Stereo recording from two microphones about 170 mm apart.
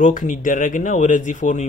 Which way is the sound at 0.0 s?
50° left (ahead or behind).